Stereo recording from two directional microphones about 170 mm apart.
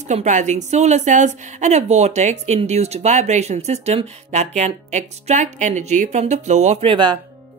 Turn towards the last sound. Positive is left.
turn(degrees=-25)  # may be behind; listen again after turning